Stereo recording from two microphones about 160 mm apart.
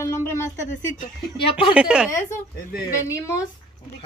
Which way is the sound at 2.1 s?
20° left (ahead or behind).